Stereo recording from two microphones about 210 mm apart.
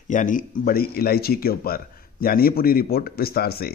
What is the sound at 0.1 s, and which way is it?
A man's voice, 40° left (ahead or behind).